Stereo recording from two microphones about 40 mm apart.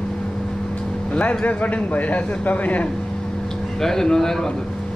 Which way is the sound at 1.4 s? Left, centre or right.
Left.